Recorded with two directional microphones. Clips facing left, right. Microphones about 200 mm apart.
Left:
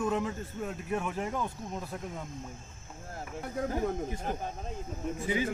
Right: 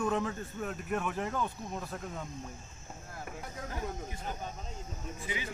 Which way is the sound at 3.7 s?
45° left (ahead or behind).